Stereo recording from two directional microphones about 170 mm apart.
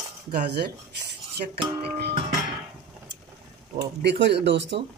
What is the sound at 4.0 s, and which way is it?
Speech, 85° right.